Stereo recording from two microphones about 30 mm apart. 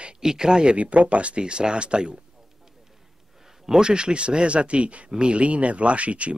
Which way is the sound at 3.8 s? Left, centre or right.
Right.